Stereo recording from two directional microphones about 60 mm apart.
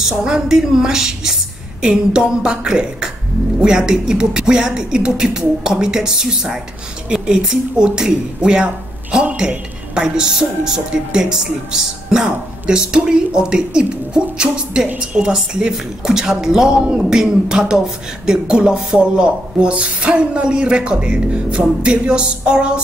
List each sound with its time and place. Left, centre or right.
0.0 s a woman's voice: centre